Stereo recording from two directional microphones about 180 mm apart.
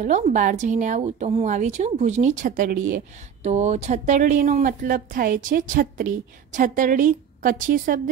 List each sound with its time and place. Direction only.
0.0 s speech: 45° right (ahead or behind)